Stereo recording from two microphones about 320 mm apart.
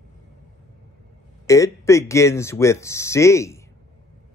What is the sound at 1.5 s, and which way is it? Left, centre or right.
Speech, centre.